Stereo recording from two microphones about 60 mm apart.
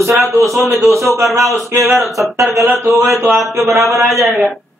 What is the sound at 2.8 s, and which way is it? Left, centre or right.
Speech, right.